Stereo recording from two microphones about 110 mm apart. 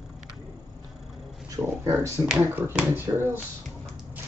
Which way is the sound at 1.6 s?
30° right (ahead or behind).